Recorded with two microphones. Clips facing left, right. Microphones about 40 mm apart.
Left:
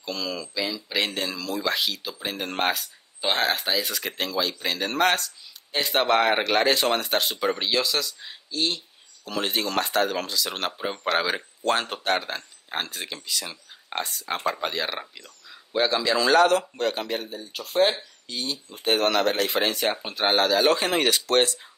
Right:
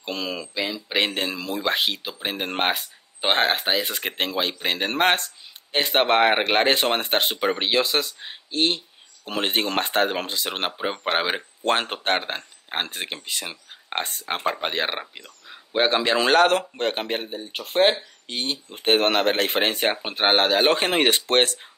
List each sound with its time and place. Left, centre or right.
0.0 s speech: right